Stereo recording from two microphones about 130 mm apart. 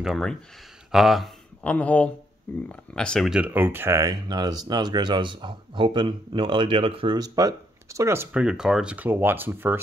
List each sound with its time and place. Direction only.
0.0 s speech: centre (ahead or behind)
1.6 s speech: 10° left (ahead or behind)
3.3 s speech: 10° right (ahead or behind); by 7.2 s 45° right (ahead or behind)
7.2 s speech: 25° right (ahead or behind)